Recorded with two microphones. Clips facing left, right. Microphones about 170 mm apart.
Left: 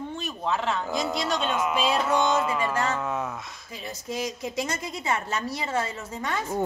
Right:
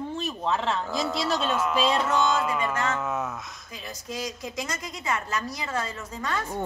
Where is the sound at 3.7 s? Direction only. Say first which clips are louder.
Left 3 dB; 25° left (ahead or behind).